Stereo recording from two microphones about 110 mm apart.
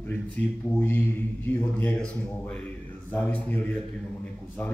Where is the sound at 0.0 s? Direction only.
20° left (ahead or behind).